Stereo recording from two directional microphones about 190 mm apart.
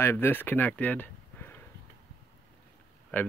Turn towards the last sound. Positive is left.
turn(degrees=10)  # may be behind; listen again after turning